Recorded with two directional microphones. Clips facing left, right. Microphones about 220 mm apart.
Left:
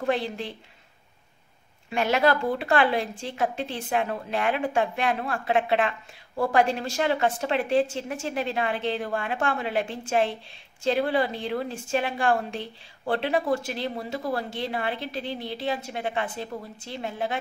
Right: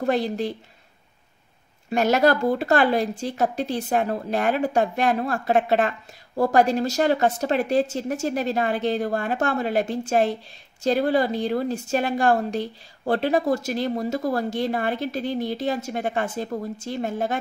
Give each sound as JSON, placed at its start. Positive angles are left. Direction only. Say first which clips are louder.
{"t": 0.0, "sound": "speech", "louder": "right 4 dB", "side_deg": -40}
{"t": 1.9, "sound": "a woman's voice", "louder": "right 4 dB", "side_deg": -40}